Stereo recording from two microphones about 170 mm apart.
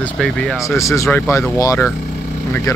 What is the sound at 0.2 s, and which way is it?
Speech, 5° left (ahead or behind).